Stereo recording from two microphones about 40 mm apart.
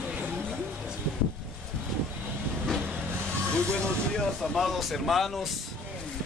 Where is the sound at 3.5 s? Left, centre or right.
Left.